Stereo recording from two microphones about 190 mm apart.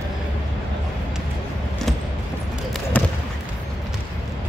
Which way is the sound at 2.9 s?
10° left (ahead or behind).